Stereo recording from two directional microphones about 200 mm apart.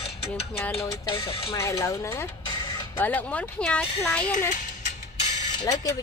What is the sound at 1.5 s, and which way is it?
Speech, 15° left (ahead or behind).